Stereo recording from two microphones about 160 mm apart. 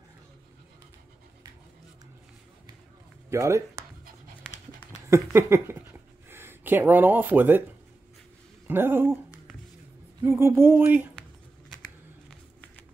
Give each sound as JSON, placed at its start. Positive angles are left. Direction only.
{"t": 3.3, "sound": "speech", "side_deg": -20}
{"t": 5.1, "sound": "speech", "side_deg": -15}
{"t": 8.6, "sound": "speech", "side_deg": -15}
{"t": 10.2, "sound": "speech", "side_deg": -15}